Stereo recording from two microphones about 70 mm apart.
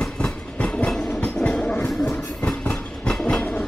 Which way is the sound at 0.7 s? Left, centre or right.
Centre.